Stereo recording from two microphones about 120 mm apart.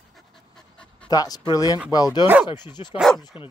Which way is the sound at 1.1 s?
35° left (ahead or behind).